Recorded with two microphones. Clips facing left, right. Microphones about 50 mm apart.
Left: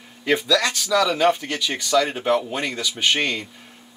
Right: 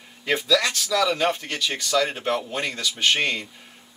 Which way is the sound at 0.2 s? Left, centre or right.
Centre.